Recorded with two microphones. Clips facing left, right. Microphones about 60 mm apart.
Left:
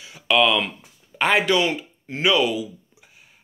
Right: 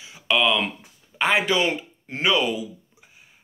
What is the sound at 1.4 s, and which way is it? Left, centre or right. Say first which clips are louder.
Speech: left 2 dB; right.